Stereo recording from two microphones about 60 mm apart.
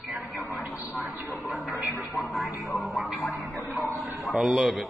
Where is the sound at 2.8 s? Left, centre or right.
Centre.